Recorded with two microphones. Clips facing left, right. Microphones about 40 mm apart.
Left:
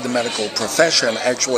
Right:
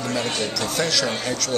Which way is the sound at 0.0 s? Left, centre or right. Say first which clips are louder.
Left 5 dB; left.